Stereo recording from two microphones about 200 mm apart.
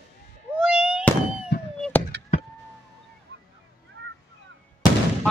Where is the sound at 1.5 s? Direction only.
60° left (ahead or behind).